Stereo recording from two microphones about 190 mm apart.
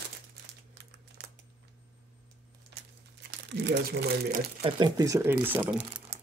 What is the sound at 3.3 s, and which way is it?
Speech, 65° right (ahead or behind).